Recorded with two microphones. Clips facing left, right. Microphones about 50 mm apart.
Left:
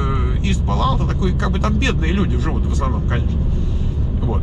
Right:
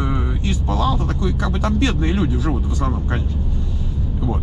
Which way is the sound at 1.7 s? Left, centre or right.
Left.